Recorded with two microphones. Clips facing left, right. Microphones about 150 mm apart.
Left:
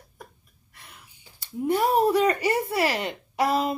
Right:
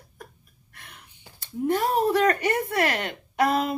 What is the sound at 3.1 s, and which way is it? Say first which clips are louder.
Speech: right 1 dB; 55° right (ahead or behind).